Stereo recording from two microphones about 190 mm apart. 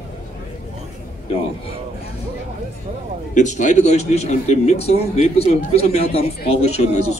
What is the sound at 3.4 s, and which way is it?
A man's voice, 40° left (ahead or behind).